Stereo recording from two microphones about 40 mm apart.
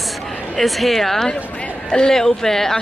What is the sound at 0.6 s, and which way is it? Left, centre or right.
Speech, centre.